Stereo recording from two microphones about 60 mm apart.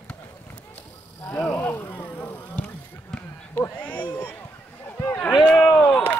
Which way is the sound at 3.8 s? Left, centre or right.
Left.